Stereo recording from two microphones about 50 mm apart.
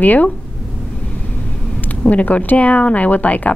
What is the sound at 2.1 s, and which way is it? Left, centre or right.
Speech, left.